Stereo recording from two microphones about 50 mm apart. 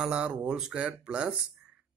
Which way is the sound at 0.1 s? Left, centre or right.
Right.